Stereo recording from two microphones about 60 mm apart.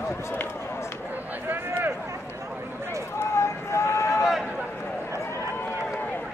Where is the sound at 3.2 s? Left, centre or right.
Left.